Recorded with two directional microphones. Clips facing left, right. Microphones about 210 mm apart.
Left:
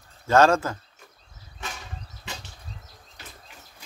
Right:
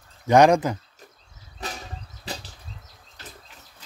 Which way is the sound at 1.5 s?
35° right (ahead or behind).